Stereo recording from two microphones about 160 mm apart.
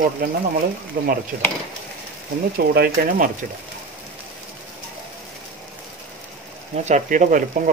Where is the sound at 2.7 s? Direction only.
75° right (ahead or behind).